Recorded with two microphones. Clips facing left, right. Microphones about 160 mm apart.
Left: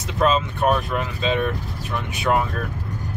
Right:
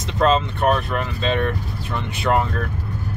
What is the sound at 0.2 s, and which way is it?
Speech, 10° left (ahead or behind).